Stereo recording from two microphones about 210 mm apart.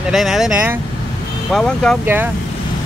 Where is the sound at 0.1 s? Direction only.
Centre (ahead or behind).